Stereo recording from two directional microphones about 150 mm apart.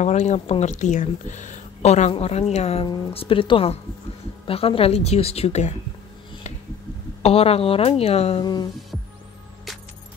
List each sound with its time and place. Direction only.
0.0 s a woman's voice: 50° left (ahead or behind)
7.2 s a woman's voice: 40° left (ahead or behind)